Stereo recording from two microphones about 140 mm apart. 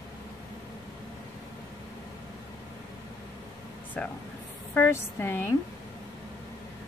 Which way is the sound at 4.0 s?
10° left (ahead or behind).